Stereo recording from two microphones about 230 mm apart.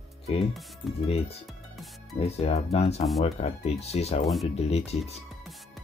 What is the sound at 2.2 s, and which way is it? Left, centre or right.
Speech, left.